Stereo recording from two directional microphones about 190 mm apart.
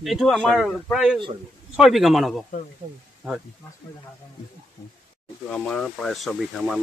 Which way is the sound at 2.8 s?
45° right (ahead or behind).